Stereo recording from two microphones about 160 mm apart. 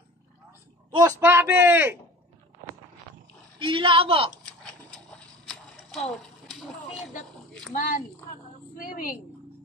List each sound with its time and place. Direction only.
0.9 s speech: 15° right (ahead or behind)
3.5 s a woman's voice: 30° right (ahead or behind)
7.7 s a woman's voice: 60° left (ahead or behind)